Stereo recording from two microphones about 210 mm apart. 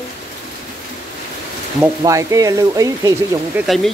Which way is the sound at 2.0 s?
15° right (ahead or behind).